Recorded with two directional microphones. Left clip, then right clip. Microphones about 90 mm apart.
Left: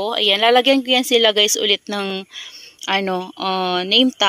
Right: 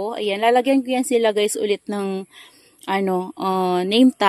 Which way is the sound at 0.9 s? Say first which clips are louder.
Left 4 dB; 25° right (ahead or behind).